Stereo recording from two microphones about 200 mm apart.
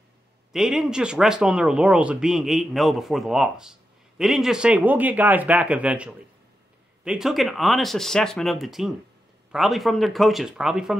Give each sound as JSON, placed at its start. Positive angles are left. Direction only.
{"t": 0.5, "sound": "speech", "side_deg": 0}